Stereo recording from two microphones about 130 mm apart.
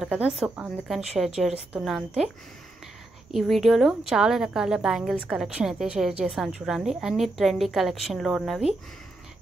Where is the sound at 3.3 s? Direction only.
Centre (ahead or behind).